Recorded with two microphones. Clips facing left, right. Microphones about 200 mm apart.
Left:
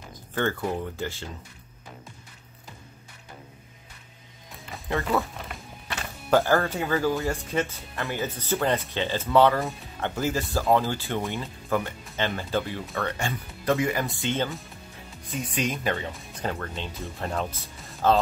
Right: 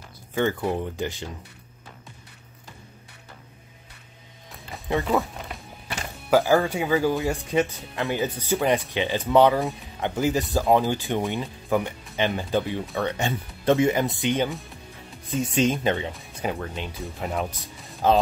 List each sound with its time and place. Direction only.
0.3 s speech: 10° right (ahead or behind)
5.9 s speech: 10° right (ahead or behind)
16.1 s music: centre (ahead or behind)
16.4 s speech: 10° right (ahead or behind)